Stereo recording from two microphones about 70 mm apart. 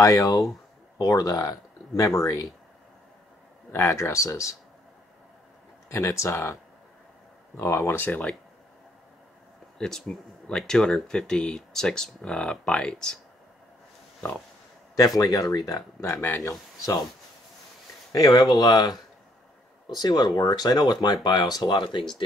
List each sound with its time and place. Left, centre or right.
0.0 s speech: left
0.9 s speech: left
3.7 s speech: left
5.9 s speech: left
8.0 s speech: left
9.8 s speech: centre
15.0 s speech: left
16.0 s speech: left
18.1 s speech: left